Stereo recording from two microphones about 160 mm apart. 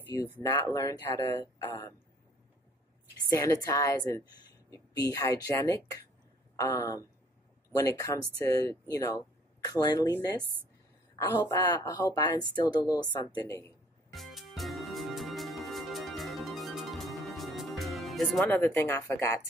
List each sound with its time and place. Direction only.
0.1 s a woman's voice: 25° left (ahead or behind)
3.3 s a woman's voice: 20° left (ahead or behind)
8.4 s a woman's voice: 20° left (ahead or behind)
11.2 s a woman's voice: 15° left (ahead or behind)
14.1 s music: centre (ahead or behind)
18.5 s speech: 15° left (ahead or behind)